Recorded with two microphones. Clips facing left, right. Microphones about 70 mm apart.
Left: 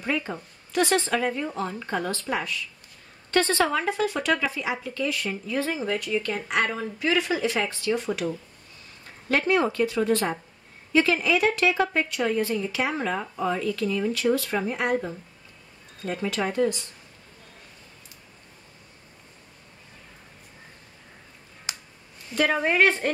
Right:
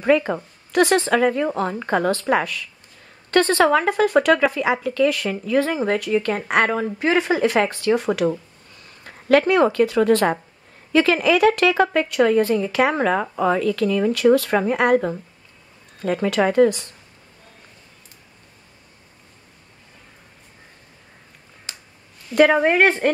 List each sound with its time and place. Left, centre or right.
0.0 s a woman's voice: right
5.8 s speech: right
9.5 s a woman's voice: right
21.7 s finger snapping: centre
22.3 s a woman's voice: right